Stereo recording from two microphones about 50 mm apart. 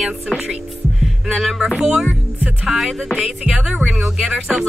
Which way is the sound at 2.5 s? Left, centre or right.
Centre.